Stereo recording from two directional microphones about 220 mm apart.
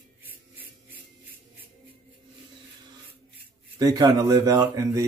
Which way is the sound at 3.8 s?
15° right (ahead or behind).